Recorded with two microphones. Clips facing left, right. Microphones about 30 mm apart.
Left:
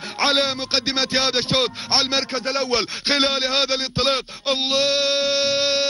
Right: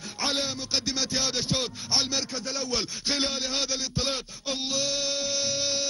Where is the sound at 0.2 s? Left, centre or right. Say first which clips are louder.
Left 9 dB; left.